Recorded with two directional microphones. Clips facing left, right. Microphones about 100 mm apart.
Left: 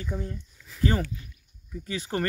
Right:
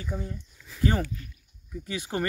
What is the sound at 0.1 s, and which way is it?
Speech, 10° right (ahead or behind).